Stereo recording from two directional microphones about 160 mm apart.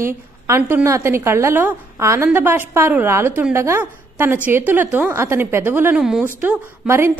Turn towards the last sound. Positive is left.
turn(degrees=-15)  # may be behind; listen again after turning